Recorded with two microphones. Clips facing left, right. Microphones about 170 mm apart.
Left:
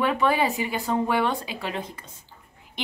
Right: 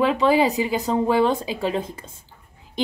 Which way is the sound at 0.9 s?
25° right (ahead or behind).